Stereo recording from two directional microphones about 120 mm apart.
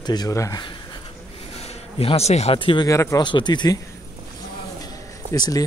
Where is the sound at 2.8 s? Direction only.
25° left (ahead or behind).